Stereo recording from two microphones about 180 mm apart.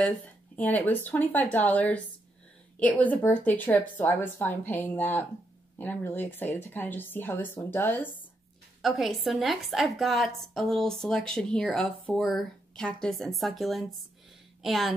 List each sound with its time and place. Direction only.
0.6 s speech: 10° left (ahead or behind)
8.8 s speech: centre (ahead or behind)